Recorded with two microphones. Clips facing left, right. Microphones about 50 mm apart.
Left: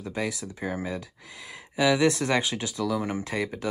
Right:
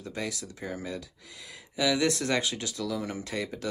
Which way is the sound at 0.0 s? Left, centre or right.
Left.